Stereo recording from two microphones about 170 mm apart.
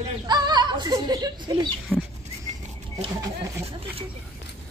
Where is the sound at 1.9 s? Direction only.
Centre (ahead or behind).